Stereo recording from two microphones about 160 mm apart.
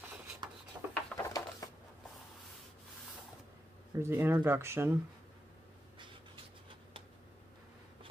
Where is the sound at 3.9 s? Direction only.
15° right (ahead or behind).